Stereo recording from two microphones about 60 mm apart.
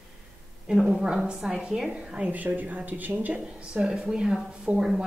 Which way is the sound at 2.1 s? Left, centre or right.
Right.